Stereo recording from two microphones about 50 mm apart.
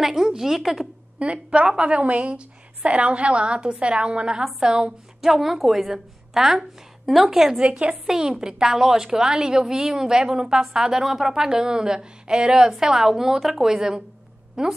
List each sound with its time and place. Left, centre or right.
0.0 s a woman's voice: centre
1.2 s a woman's voice: right
5.2 s a woman's voice: centre